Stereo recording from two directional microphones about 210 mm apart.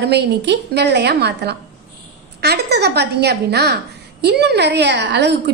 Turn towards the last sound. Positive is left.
turn(degrees=-55)  # may be behind; listen again after turning